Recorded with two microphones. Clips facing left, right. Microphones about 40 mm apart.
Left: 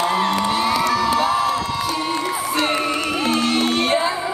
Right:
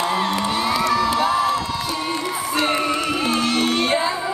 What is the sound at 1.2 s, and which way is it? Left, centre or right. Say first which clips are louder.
Crowd: even; right.